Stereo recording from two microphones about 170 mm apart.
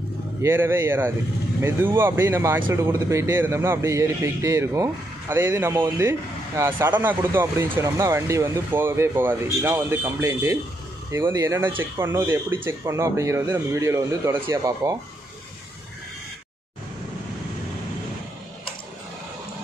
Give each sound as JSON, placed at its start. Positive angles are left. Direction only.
{"t": 0.4, "sound": "speech", "side_deg": -15}